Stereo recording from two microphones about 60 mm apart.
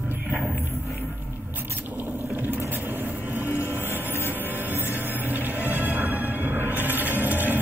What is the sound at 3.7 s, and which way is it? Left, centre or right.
Music, right.